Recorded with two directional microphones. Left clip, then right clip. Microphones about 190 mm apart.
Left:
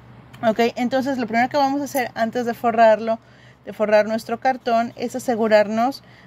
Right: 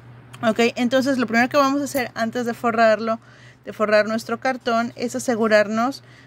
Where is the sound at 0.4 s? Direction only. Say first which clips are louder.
Even; 15° right (ahead or behind).